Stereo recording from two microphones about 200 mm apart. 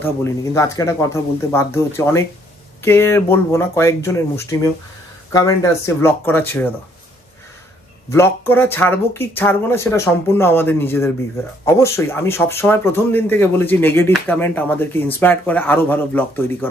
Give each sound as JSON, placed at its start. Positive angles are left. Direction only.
{"t": 0.0, "sound": "speech", "side_deg": 15}
{"t": 8.1, "sound": "speech", "side_deg": 10}